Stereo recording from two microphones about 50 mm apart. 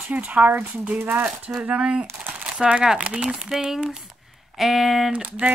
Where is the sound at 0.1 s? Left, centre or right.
Right.